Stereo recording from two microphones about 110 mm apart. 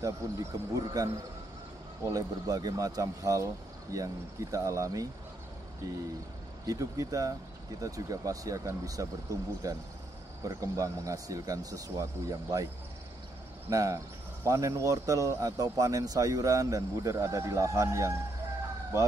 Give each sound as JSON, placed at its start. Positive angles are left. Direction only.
{"t": 0.0, "sound": "speech", "side_deg": -30}
{"t": 6.6, "sound": "speech", "side_deg": -35}
{"t": 13.7, "sound": "speech", "side_deg": -30}